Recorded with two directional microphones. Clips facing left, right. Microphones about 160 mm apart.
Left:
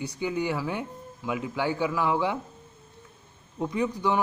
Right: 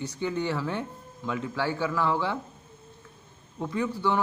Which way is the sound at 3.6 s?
15° left (ahead or behind).